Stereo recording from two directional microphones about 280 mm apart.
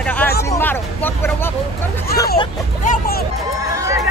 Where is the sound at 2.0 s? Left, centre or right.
Left.